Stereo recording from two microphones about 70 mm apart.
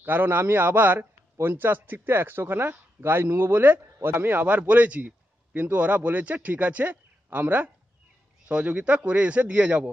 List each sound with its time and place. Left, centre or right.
0.0 s a man's voice: right